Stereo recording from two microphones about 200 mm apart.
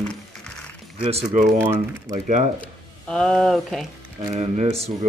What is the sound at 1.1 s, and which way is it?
Speech, 35° right (ahead or behind).